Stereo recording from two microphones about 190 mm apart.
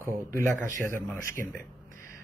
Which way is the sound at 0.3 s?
40° right (ahead or behind).